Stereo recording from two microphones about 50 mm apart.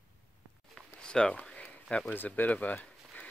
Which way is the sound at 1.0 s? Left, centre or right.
Centre.